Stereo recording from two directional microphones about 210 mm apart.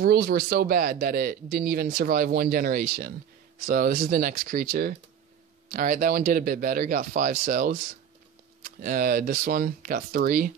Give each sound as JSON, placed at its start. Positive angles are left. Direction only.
{"t": 0.0, "sound": "speech", "side_deg": -45}